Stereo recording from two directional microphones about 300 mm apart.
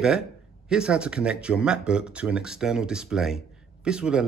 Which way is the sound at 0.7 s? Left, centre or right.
Centre.